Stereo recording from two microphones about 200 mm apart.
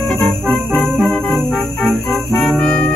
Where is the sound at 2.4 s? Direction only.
Centre (ahead or behind).